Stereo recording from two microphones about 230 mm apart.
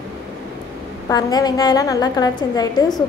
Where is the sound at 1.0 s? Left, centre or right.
Centre.